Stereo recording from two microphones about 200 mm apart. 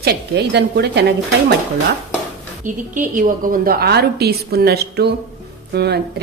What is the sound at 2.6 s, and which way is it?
A woman's voice, 40° right (ahead or behind).